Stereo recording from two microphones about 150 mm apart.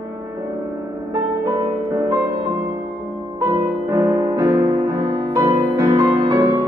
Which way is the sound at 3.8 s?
20° right (ahead or behind).